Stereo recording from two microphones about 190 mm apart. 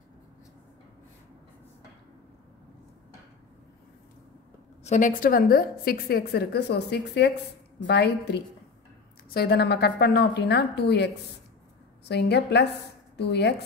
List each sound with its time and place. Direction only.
4.8 s a woman's voice: 40° left (ahead or behind); by 11.1 s 65° left (ahead or behind)
12.1 s a woman's voice: 60° left (ahead or behind)